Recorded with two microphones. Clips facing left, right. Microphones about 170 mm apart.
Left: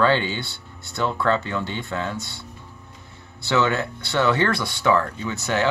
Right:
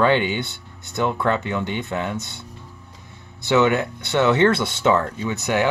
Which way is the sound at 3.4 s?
20° right (ahead or behind).